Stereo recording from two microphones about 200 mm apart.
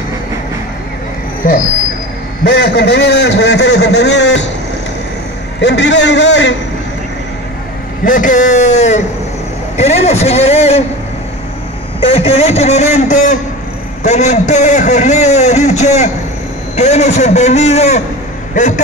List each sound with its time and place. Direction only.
2.4 s a man's voice: 55° left (ahead or behind)
5.6 s a man's voice: 60° left (ahead or behind)
8.0 s a man's voice: 40° left (ahead or behind)
12.1 s a man's voice: 30° left (ahead or behind)